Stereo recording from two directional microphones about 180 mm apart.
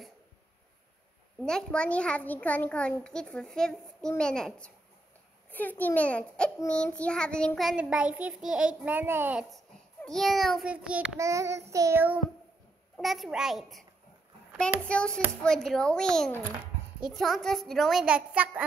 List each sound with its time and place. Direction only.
1.4 s child singing: 5° left (ahead or behind)
5.5 s a child's voice: 10° left (ahead or behind)
6.7 s child singing: 5° left (ahead or behind)
11.1 s child singing: 15° right (ahead or behind)
12.9 s child singing: centre (ahead or behind)
14.9 s child singing: 5° left (ahead or behind)